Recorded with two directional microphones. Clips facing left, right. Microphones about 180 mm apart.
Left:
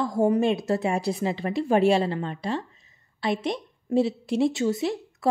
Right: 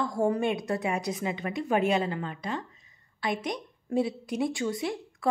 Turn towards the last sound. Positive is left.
turn(degrees=25)  # may be behind; listen again after turning